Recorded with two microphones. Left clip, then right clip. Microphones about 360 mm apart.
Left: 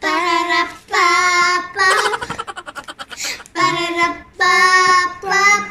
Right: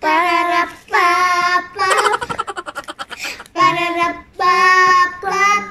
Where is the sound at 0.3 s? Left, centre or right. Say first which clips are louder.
Right 1 dB; centre.